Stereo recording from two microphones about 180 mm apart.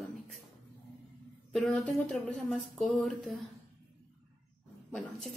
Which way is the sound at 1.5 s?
Centre (ahead or behind).